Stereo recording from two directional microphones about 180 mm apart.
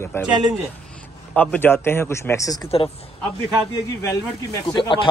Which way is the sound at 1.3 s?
10° left (ahead or behind).